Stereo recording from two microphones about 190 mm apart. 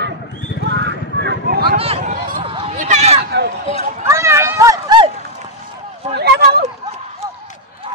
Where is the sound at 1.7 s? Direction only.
30° right (ahead or behind).